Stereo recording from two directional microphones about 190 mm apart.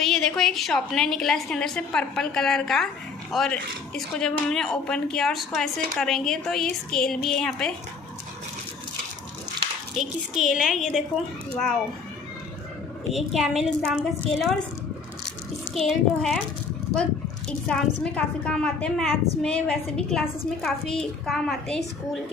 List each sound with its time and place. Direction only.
0.0 s a woman's voice: centre (ahead or behind)
9.9 s a woman's voice: centre (ahead or behind)
13.1 s a woman's voice: centre (ahead or behind)
15.7 s a woman's voice: centre (ahead or behind)